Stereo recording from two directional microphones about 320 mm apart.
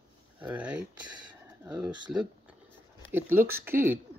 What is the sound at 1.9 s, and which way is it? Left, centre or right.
Speech, centre.